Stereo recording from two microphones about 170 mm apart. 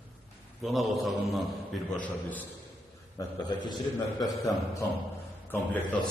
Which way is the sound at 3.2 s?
25° left (ahead or behind).